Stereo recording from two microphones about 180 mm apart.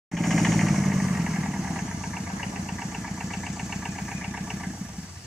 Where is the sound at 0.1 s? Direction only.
Centre (ahead or behind).